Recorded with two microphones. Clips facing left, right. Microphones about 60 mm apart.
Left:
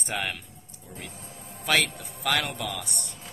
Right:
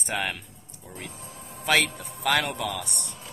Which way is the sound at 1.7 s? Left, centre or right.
Centre.